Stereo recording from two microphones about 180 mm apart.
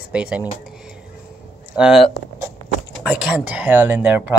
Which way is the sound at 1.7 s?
5° right (ahead or behind).